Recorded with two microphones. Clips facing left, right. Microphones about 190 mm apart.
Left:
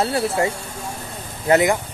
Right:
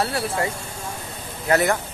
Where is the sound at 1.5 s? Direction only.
15° left (ahead or behind).